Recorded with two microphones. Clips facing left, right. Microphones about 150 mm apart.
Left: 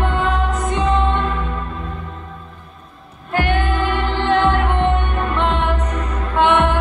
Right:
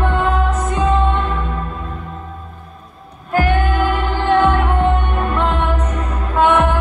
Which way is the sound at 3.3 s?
40° right (ahead or behind).